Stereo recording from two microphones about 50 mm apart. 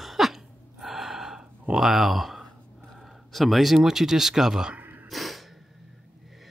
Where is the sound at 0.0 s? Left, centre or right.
Centre.